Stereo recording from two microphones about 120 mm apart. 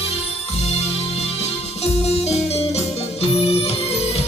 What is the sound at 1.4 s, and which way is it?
Music, 60° left (ahead or behind).